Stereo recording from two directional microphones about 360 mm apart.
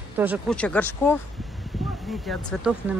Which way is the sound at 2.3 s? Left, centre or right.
Centre.